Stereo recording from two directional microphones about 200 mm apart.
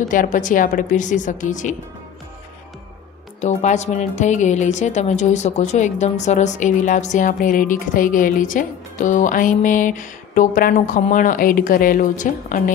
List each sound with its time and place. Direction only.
0.1 s speech: 40° left (ahead or behind)
3.3 s speech: 35° left (ahead or behind)